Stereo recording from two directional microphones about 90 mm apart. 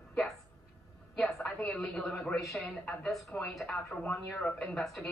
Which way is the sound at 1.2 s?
5° left (ahead or behind).